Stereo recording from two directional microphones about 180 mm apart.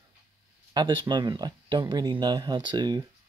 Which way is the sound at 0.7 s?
25° right (ahead or behind).